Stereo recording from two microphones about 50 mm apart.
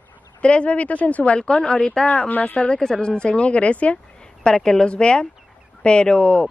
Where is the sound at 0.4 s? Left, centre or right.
Left.